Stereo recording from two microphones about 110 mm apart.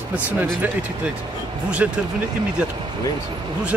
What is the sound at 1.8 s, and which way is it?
Speech, 10° right (ahead or behind).